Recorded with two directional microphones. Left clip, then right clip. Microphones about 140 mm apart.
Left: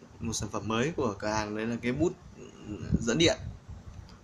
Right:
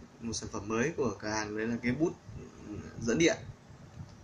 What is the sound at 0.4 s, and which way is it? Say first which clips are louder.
Speech: left 2 dB; 55° left (ahead or behind).